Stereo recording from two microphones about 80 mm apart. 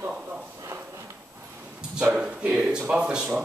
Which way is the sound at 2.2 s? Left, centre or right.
Centre.